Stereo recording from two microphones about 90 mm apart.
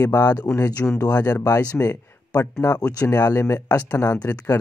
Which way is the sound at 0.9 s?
45° left (ahead or behind).